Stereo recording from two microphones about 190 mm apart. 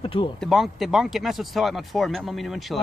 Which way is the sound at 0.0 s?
25° left (ahead or behind).